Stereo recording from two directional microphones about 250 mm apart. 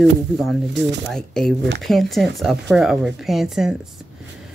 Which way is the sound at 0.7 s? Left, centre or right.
Right.